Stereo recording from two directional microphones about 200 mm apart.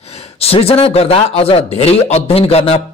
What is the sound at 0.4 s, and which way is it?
A man's voice, 30° left (ahead or behind).